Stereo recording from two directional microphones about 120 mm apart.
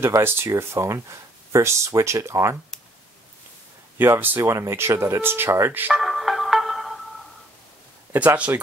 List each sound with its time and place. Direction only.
0.0 s speech: 20° right (ahead or behind)
4.0 s speech: 15° right (ahead or behind)
5.9 s music: centre (ahead or behind)
8.1 s speech: 15° right (ahead or behind)